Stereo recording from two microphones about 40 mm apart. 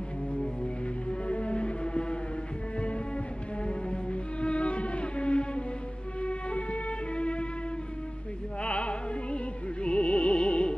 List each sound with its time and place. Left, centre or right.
1.2 s music: left
3.6 s music: left
8.6 s opera: left
9.8 s music: left